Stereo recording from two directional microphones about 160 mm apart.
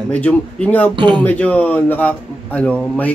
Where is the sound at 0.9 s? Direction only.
30° right (ahead or behind).